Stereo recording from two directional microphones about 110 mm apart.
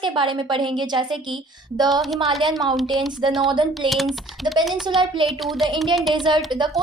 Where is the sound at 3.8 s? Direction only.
Centre (ahead or behind).